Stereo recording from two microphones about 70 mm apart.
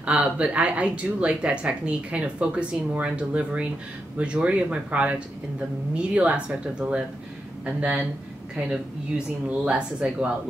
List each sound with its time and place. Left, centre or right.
0.0 s speech: centre